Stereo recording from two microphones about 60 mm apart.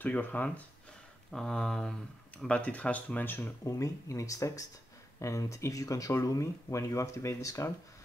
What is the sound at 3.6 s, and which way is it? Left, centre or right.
Speech, left.